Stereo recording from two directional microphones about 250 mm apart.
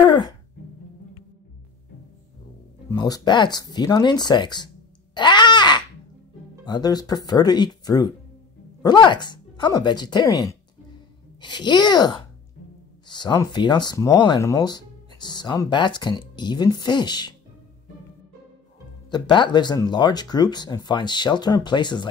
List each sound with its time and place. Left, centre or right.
0.0 s music: centre
2.9 s speech: centre
5.1 s a sound: centre
6.6 s speech: centre
19.0 s speech: centre